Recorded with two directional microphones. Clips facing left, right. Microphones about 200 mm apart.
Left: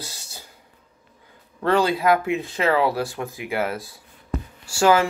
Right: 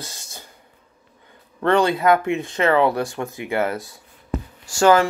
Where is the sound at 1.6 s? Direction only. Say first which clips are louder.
Right 2 dB; 5° left (ahead or behind).